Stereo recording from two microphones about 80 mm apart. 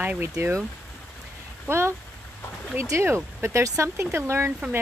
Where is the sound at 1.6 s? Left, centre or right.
Right.